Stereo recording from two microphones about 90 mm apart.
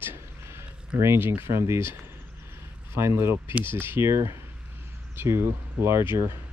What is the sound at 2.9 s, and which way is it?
Speech, 30° right (ahead or behind).